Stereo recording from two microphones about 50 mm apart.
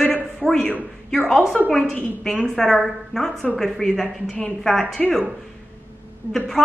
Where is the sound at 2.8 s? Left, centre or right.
Centre.